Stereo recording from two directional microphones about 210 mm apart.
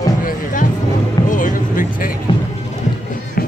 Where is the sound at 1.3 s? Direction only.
40° left (ahead or behind).